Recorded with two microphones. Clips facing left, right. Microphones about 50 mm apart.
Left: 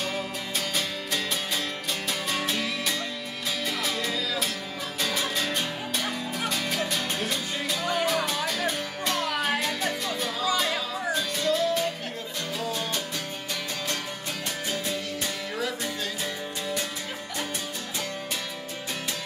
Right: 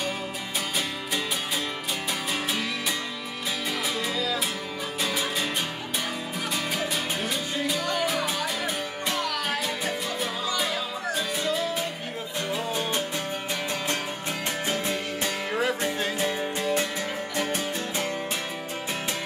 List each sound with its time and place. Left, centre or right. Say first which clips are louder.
5.0 s music: even; centre
6.5 s music: right 2 dB; centre
12.5 s music: right 1 dB; right
14.7 s music: right 1 dB; right